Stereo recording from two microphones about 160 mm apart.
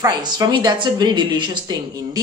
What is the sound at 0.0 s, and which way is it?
Speech, 25° right (ahead or behind).